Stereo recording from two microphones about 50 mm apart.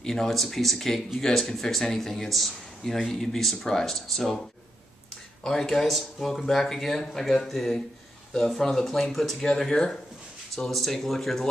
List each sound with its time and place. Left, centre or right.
0.0 s speech: centre
5.4 s speech: centre